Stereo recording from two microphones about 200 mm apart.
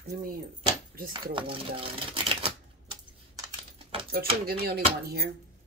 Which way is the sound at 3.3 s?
25° right (ahead or behind).